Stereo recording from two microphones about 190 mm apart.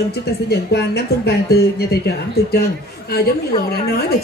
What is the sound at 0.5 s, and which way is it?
Speech, 60° left (ahead or behind).